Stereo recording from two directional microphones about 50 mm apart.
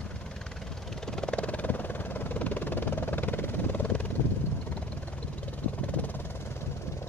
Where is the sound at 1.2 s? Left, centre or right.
Left.